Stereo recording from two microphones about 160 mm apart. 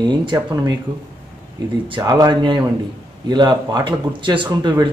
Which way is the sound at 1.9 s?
25° right (ahead or behind).